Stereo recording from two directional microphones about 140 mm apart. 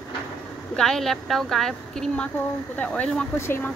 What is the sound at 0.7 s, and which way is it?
Speech, 5° left (ahead or behind).